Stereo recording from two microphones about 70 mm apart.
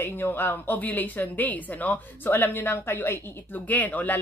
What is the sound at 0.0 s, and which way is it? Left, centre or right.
Speech, left.